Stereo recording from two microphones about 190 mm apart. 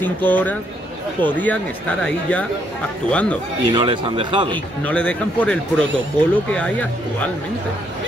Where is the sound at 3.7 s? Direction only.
25° right (ahead or behind).